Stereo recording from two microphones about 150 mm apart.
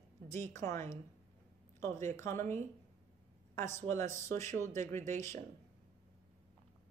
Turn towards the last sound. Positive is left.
turn(degrees=20)  # may be behind; listen again after turning